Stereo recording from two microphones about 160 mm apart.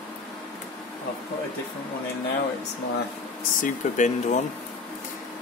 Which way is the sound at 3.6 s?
50° left (ahead or behind).